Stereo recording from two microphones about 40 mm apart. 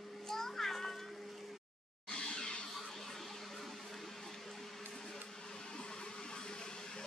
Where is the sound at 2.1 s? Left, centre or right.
Centre.